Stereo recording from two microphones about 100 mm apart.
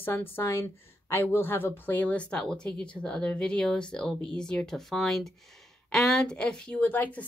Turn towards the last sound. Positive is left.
turn(degrees=15)  # may be behind; listen again after turning